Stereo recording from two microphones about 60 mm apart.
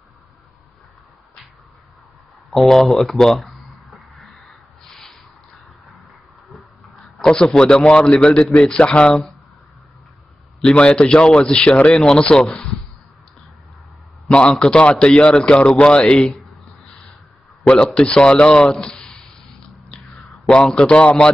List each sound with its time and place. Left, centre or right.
2.5 s a sound: centre
6.5 s a sound: centre
7.2 s speech: centre
10.6 s speech: centre
14.3 s speech: centre
16.2 s speech: centre
17.8 s speech: centre
20.1 s a sound: centre
20.6 s speech: centre